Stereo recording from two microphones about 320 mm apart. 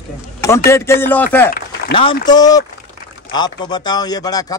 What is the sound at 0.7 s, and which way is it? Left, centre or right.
A man's voice, centre.